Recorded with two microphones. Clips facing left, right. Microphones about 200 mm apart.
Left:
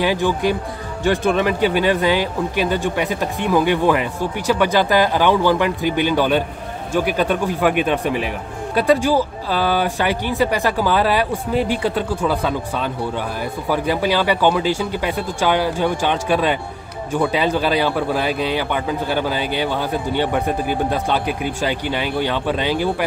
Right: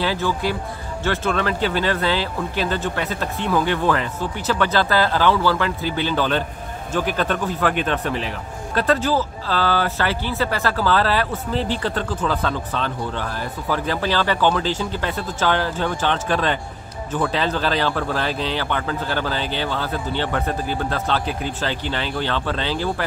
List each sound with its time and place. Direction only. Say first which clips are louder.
0.0 s speech: left 4 dB; 15° left (ahead or behind)